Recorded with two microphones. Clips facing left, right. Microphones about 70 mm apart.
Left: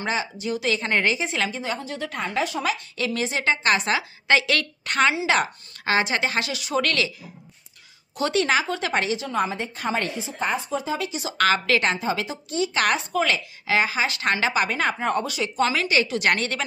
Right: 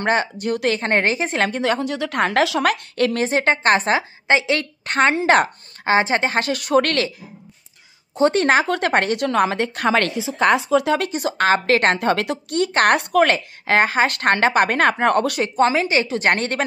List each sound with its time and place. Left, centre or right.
0.0 s a woman's voice: right
1.6 s a woman's voice: right
5.9 s a woman's voice: right
8.2 s a woman's voice: right
11.3 s a woman's voice: right
11.9 s a woman's voice: right
15.7 s a woman's voice: right